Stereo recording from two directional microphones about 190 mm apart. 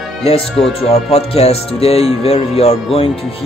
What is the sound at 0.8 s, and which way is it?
Speech, 30° left (ahead or behind).